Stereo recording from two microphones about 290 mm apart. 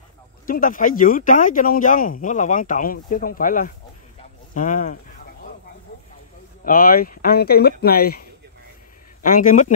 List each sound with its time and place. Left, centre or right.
0.5 s speech: left
6.6 s speech: left